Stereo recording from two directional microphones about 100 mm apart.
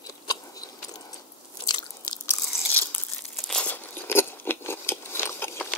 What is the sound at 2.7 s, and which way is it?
Crumpling, 20° left (ahead or behind).